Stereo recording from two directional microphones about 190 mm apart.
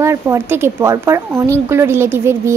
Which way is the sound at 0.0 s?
15° right (ahead or behind).